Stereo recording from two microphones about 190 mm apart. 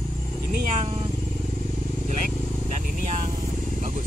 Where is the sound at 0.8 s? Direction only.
30° right (ahead or behind).